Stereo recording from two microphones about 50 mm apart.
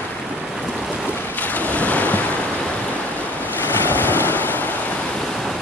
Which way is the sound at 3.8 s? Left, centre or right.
Left.